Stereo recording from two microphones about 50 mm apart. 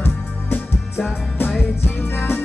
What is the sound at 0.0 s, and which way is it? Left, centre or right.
Music, left.